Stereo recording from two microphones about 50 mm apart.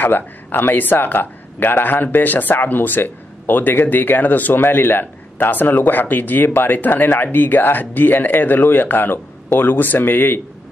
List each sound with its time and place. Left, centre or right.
0.0 s speech: left